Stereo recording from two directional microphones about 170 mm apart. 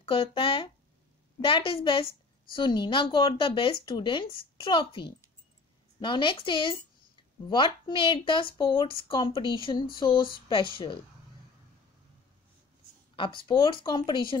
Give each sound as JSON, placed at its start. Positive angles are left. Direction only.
{"t": 0.0, "sound": "a woman's voice", "side_deg": 30}
{"t": 13.1, "sound": "a woman's voice", "side_deg": 30}